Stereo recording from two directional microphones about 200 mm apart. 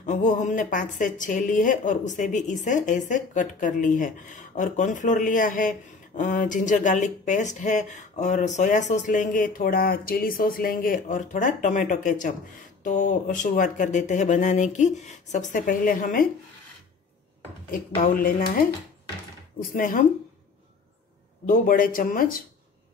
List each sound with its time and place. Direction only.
0.0 s a woman's voice: 40° left (ahead or behind)
17.6 s speech: 45° left (ahead or behind)
19.7 s speech: 40° left (ahead or behind)
21.5 s speech: 45° left (ahead or behind)